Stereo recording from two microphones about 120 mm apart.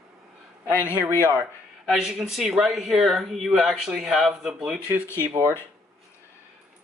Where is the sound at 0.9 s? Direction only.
15° right (ahead or behind).